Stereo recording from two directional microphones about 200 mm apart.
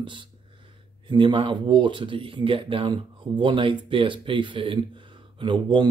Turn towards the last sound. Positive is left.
turn(degrees=-25)  # may be behind; listen again after turning